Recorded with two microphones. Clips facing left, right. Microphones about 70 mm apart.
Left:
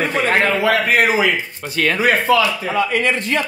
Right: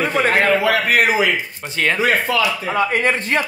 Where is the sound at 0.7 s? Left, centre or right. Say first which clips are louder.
Left 1 dB; left.